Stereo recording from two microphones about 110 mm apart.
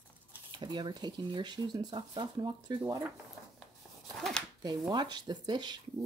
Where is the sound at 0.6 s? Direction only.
45° right (ahead or behind).